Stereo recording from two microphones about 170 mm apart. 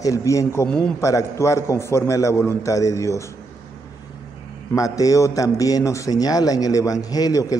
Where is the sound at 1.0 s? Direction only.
20° left (ahead or behind).